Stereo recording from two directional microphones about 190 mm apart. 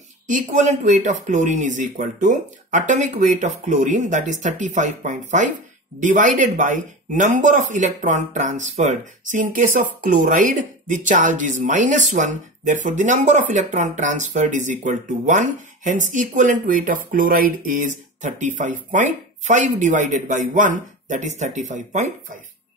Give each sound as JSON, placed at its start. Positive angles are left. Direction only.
{"t": 0.3, "sound": "speech", "side_deg": -40}